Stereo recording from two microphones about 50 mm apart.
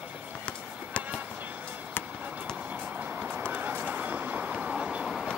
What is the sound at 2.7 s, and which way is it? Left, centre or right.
Vehicle, right.